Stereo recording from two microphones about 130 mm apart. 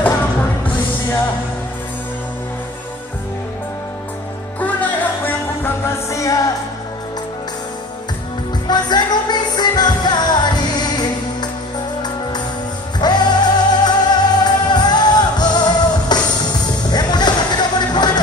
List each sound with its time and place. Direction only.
4.6 s music: 10° left (ahead or behind)
8.6 s music: 35° left (ahead or behind)
13.0 s music: 35° left (ahead or behind)